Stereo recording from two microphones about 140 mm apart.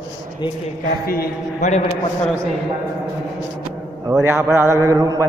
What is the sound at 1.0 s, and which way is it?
Speech, 90° left.